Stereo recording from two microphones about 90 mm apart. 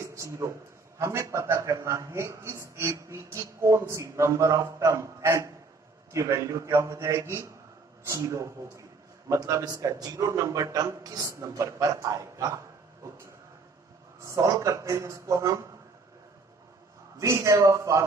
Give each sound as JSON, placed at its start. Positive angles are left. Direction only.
{"t": 0.0, "sound": "a man's voice", "side_deg": -35}
{"t": 14.2, "sound": "a man's voice", "side_deg": -35}
{"t": 17.2, "sound": "a man's voice", "side_deg": -35}